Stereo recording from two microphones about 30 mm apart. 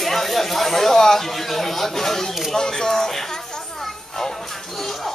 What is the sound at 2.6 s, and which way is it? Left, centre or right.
Speech, left.